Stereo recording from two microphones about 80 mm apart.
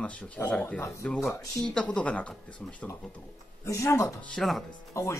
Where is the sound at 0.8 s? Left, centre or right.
Left.